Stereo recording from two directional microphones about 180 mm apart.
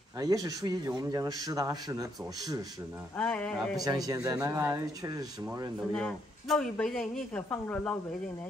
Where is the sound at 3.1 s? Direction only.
5° left (ahead or behind).